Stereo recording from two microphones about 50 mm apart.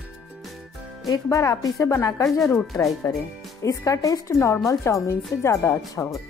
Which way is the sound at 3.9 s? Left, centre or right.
Left.